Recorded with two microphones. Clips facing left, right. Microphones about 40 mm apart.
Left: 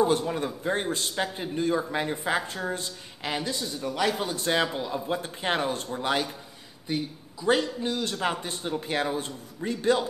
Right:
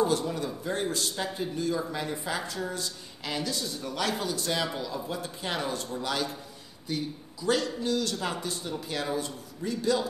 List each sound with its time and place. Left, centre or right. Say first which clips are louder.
0.0 s a man's voice: left 3 dB; left; by 4.2 s centre
4.2 s a man's voice: left 4 dB; left